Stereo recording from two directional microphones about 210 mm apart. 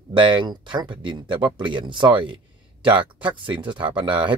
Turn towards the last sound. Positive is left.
turn(degrees=-20)  # may be behind; listen again after turning